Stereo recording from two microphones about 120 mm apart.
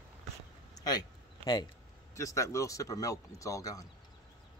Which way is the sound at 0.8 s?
35° left (ahead or behind).